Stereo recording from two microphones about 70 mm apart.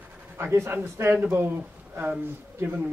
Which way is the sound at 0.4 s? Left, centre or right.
Right.